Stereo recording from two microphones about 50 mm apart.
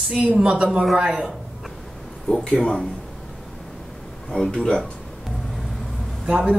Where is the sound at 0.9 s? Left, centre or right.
Right.